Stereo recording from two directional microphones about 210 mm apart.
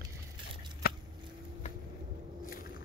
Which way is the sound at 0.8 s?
45° left (ahead or behind).